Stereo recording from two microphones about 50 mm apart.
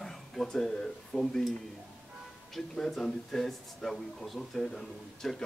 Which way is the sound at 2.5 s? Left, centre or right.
Centre.